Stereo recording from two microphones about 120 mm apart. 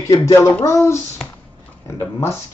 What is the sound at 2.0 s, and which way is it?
Speech, 25° left (ahead or behind).